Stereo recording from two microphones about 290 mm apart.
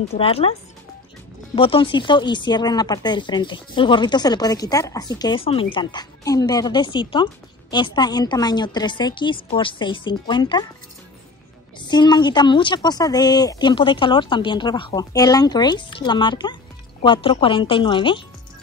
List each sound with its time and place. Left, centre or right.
0.1 s speech: centre
11.8 s speech: centre